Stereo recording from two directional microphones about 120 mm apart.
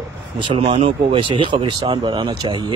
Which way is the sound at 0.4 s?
50° right (ahead or behind).